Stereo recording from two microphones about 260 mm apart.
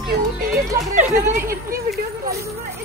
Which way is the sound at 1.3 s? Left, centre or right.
Right.